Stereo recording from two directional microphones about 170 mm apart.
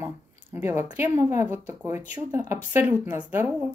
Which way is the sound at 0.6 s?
15° right (ahead or behind).